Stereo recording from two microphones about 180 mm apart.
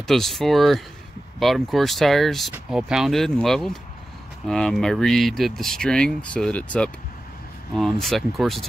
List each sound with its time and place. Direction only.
0.0 s speech: centre (ahead or behind)